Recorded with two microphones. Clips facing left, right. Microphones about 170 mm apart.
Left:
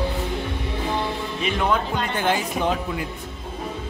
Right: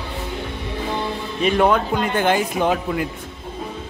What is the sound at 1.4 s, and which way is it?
Speech, 55° right (ahead or behind).